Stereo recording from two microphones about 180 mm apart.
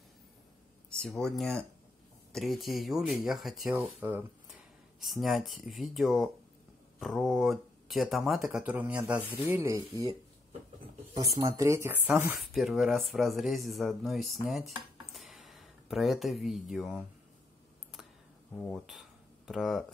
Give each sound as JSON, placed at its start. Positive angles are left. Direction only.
{"t": 0.8, "sound": "speech", "side_deg": 5}
{"t": 11.1, "sound": "speech", "side_deg": -20}
{"t": 15.1, "sound": "a sound", "side_deg": 0}
{"t": 18.6, "sound": "speech", "side_deg": 0}